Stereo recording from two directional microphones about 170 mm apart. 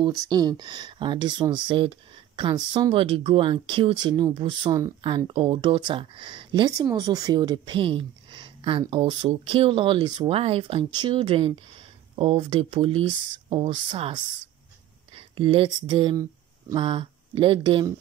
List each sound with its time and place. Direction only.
0.2 s speech: 25° right (ahead or behind)